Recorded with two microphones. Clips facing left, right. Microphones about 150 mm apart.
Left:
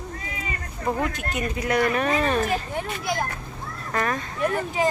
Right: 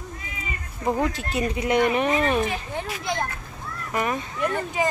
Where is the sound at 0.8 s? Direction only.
20° right (ahead or behind).